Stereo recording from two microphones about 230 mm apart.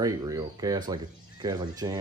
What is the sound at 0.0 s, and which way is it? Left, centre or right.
Speech, centre.